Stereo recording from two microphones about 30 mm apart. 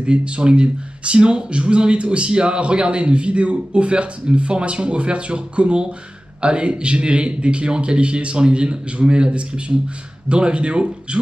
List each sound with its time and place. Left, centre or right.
0.0 s speech: right